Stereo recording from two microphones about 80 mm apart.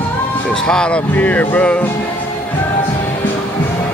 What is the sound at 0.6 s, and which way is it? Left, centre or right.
Speech, centre.